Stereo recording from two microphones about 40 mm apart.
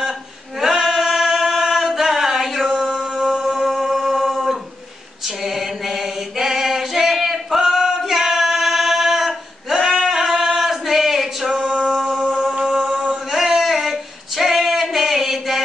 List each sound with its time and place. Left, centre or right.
0.6 s chant: centre
5.2 s a sound: centre
8.0 s singing: centre
11.5 s male singing: right
12.2 s chant: centre
13.3 s female singing: centre